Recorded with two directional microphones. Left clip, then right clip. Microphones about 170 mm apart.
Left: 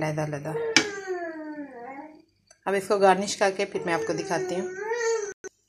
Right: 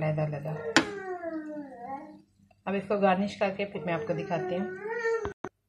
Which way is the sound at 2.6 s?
50° left (ahead or behind).